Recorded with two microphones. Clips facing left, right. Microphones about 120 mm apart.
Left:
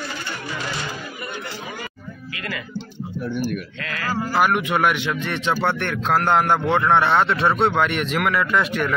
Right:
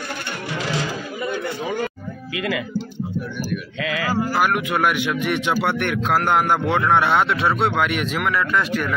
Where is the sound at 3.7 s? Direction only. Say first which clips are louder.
Right 6 dB; 90° right.